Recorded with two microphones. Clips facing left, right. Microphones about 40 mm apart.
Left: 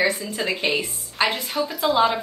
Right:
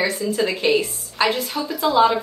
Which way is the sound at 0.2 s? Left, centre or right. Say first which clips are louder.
Right 4 dB; centre.